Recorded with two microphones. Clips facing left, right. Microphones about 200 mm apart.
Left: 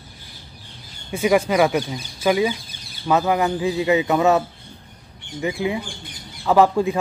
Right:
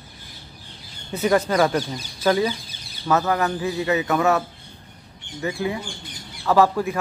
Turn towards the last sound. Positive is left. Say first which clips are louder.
# left 2 dB
turn(degrees=20)  # may be behind; listen again after turning